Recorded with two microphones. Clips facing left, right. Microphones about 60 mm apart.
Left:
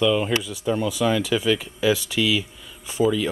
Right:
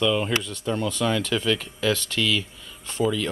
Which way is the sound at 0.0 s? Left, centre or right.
Centre.